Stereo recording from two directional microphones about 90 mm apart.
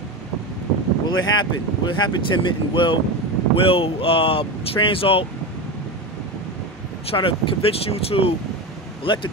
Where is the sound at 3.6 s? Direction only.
90° left.